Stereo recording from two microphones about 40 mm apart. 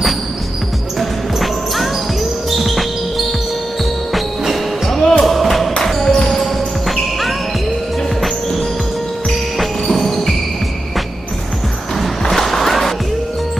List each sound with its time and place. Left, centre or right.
0.9 s music: centre
9.6 s music: centre
12.0 s music: centre